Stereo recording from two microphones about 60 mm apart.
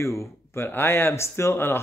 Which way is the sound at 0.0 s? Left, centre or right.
Left.